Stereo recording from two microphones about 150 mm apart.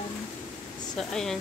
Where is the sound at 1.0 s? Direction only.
5° left (ahead or behind).